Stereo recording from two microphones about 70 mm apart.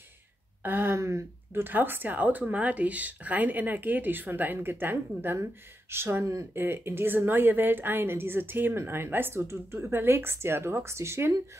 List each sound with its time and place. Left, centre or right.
0.7 s a woman's voice: right